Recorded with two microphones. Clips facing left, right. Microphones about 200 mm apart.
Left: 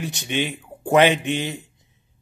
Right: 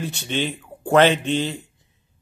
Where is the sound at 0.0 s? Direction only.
15° left (ahead or behind).